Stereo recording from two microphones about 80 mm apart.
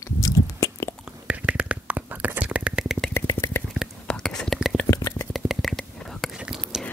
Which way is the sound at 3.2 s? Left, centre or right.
Left.